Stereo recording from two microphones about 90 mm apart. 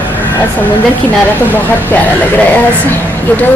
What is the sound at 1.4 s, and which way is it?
A woman's voice, 20° left (ahead or behind).